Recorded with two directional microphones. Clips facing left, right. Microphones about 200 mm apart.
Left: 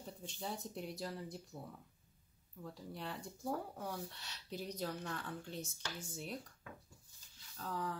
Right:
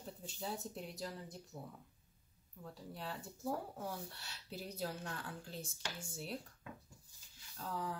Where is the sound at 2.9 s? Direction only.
Centre (ahead or behind).